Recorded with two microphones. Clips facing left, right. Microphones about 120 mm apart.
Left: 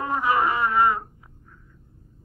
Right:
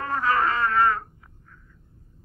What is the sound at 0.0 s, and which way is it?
Wail, 15° left (ahead or behind).